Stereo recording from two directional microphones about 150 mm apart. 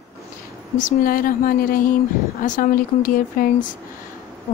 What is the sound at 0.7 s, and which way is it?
Speech, 65° left (ahead or behind).